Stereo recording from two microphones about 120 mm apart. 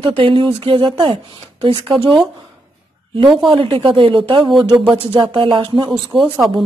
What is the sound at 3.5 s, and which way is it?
Speech, 45° right (ahead or behind).